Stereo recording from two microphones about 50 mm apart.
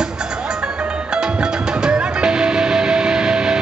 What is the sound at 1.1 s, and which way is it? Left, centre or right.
Music, centre.